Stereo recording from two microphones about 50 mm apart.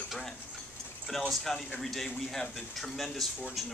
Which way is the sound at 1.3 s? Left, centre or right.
Centre.